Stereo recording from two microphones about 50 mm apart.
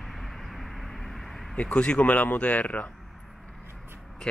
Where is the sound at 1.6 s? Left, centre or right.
Left.